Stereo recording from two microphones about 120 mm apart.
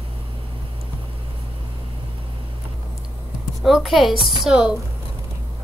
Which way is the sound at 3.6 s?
Centre (ahead or behind).